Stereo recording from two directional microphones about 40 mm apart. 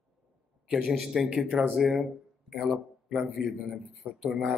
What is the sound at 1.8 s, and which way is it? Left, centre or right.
Speech, centre.